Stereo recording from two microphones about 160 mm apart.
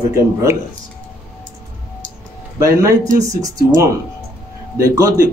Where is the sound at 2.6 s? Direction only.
20° right (ahead or behind).